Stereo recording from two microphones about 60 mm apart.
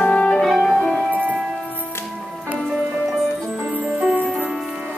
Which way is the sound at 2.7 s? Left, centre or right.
Centre.